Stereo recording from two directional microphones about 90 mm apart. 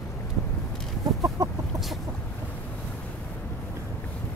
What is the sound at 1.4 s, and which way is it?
Chicken, 40° right (ahead or behind).